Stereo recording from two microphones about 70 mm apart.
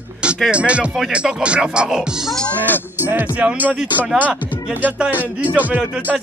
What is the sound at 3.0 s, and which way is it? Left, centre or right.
Speech, right.